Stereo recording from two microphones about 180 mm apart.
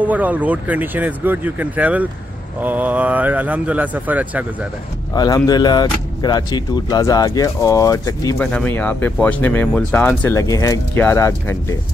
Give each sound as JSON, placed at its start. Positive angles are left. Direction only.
{"t": 0.0, "sound": "speech", "side_deg": -10}
{"t": 5.1, "sound": "speech", "side_deg": 20}
{"t": 8.4, "sound": "speech", "side_deg": 10}